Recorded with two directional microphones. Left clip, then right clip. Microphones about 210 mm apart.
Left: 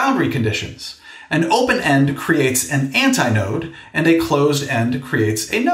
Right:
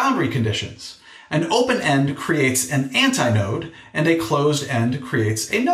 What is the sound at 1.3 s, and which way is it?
Speech, 60° left (ahead or behind).